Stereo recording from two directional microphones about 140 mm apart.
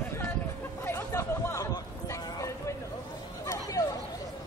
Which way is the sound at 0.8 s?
20° left (ahead or behind).